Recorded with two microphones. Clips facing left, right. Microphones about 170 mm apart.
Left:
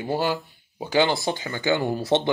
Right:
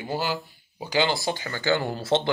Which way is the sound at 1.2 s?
20° left (ahead or behind).